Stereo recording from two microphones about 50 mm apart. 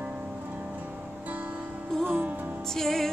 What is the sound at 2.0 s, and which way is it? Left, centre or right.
Music, right.